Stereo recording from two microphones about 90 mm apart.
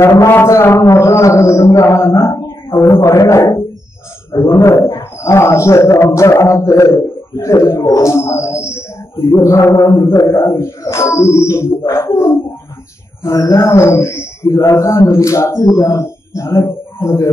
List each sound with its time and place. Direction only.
0.3 s a man's voice: 25° left (ahead or behind)
15.6 s speech: 45° left (ahead or behind)